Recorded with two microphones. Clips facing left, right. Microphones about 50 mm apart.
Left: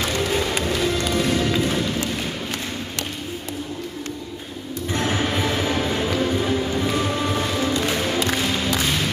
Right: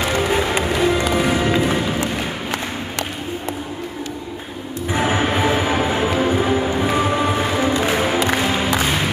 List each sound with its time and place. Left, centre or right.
0.0 s music: right
4.9 s music: centre